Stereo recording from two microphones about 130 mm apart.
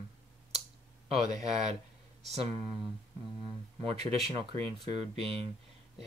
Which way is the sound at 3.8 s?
50° right (ahead or behind).